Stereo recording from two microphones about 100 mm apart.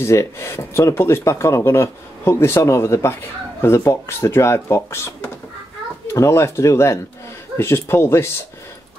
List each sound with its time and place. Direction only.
0.0 s speech: 30° left (ahead or behind)